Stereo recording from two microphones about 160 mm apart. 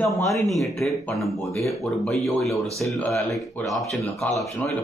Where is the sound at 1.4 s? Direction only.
20° left (ahead or behind).